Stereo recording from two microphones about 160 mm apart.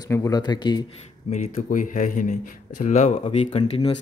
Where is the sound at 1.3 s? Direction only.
45° left (ahead or behind).